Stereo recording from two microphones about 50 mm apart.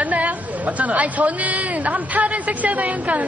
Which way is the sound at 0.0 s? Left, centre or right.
Right.